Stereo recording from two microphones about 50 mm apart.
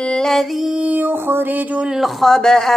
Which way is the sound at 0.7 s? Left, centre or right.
Right.